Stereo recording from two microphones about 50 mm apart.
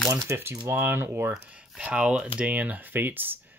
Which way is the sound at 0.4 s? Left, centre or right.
Right.